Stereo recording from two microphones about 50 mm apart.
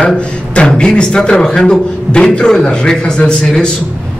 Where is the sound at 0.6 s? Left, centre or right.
Left.